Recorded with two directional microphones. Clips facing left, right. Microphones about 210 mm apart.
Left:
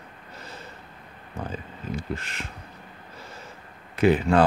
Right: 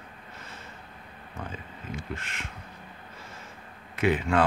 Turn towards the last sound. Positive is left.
turn(degrees=35)  # may be behind; listen again after turning